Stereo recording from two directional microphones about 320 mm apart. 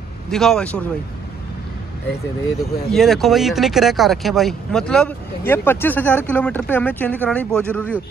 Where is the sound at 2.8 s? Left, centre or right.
Centre.